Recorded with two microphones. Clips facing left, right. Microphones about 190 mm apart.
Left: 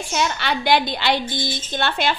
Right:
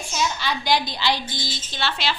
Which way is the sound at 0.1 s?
65° left (ahead or behind).